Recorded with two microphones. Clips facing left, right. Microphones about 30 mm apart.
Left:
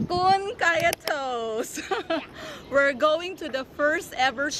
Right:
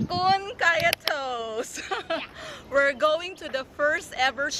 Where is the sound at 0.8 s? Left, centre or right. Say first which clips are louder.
Even; right.